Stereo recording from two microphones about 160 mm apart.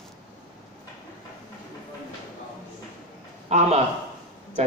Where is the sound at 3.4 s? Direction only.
45° right (ahead or behind).